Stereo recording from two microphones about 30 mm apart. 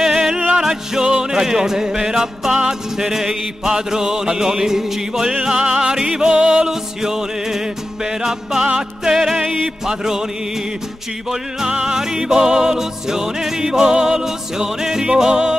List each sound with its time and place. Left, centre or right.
0.0 s music: centre
5.4 s music: right
6.6 s music: centre
11.8 s music: right